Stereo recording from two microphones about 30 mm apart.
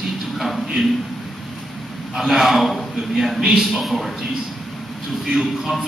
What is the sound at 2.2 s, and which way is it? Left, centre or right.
Speech, centre.